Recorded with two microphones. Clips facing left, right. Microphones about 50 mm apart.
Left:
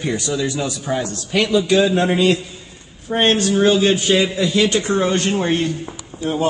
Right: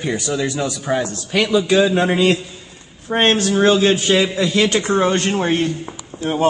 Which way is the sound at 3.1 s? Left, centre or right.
Right.